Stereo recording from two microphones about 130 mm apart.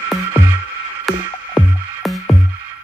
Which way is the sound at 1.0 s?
Centre (ahead or behind).